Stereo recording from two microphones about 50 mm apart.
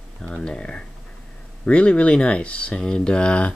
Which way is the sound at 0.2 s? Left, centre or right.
Centre.